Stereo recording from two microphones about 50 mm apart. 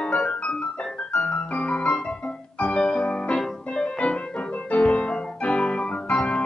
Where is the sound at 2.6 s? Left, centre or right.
Centre.